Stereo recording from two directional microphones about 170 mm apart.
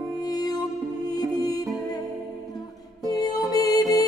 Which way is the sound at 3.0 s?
20° left (ahead or behind).